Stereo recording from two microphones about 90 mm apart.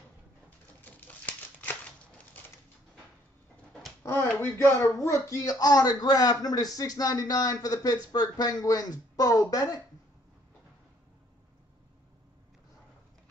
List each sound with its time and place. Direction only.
1.0 s crumpling: 20° left (ahead or behind)
4.0 s finger snapping: 30° left (ahead or behind)
4.3 s speech: 25° left (ahead or behind); by 9.8 s 45° left (ahead or behind)